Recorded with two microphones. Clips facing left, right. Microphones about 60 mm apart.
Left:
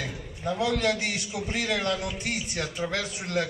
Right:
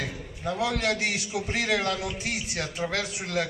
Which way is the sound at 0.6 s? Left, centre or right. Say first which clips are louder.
Left 1 dB; centre.